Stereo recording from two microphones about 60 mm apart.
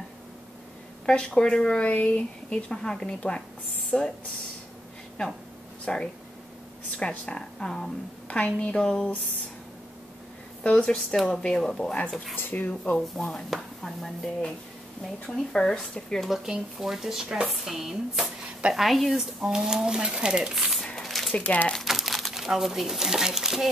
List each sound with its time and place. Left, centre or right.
1.0 s speech: centre
2.7 s speech: centre
5.9 s speech: centre
10.6 s speech: centre
12.4 s speech: left
12.9 s speech: centre
16.4 s speech: centre
20.5 s speech: centre
20.8 s a sound: centre
21.3 s speech: left
21.7 s speech: centre